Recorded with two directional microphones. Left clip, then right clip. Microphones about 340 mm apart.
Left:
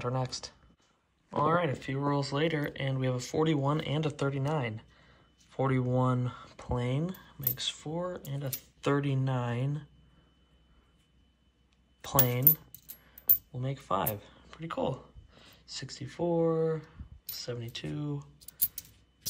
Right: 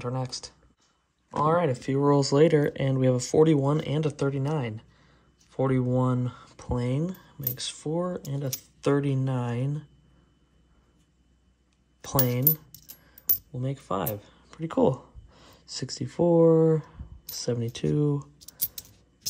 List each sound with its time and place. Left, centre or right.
0.0 s speech: centre
12.0 s speech: centre
12.5 s coin: centre
13.6 s speech: centre
17.9 s speech: right